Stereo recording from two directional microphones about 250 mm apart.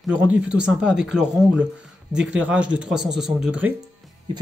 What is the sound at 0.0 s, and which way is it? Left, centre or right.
Speech, centre.